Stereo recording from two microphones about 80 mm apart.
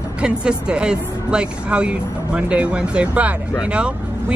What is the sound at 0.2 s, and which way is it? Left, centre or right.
Speech, centre.